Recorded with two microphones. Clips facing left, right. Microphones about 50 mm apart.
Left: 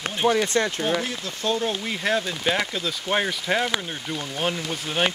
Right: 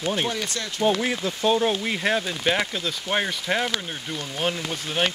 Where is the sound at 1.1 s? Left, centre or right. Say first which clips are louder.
Right 4 dB; centre.